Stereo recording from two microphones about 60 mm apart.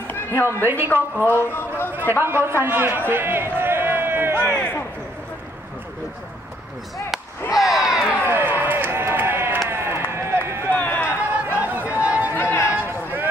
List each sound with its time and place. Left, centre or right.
0.1 s a sound: left
0.7 s speech: right
1.2 s speech: left
2.2 s a man's voice: right
3.1 s run: right
4.5 s speech: left
7.5 s a sound: centre
8.1 s a sound: right
9.7 s run: right
10.7 s run: left
11.6 s a sound: right
12.4 s chatter: left
12.7 s run: right